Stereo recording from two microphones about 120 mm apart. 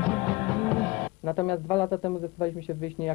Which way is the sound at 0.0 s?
10° left (ahead or behind).